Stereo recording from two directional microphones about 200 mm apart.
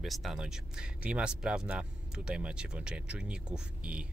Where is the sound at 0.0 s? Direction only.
Centre (ahead or behind).